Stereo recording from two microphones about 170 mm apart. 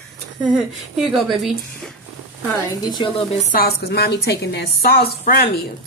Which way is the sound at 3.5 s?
65° left (ahead or behind).